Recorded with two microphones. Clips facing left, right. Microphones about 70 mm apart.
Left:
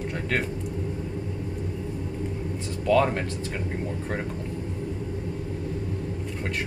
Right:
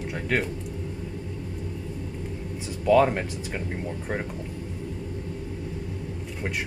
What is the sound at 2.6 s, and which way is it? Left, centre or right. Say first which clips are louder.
Speech: right 2 dB; centre.